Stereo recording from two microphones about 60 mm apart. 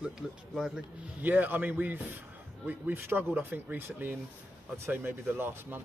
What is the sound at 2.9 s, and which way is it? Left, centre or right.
Speech, right.